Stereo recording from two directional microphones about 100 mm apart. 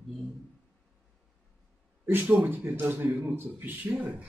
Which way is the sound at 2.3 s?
20° right (ahead or behind).